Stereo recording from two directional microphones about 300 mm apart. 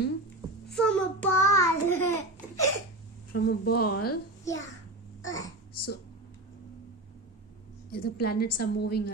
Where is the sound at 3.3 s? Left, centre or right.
Left.